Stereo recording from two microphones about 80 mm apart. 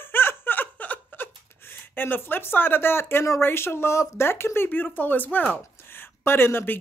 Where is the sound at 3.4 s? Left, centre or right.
Left.